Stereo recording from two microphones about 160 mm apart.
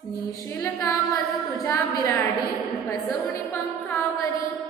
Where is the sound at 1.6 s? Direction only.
20° left (ahead or behind).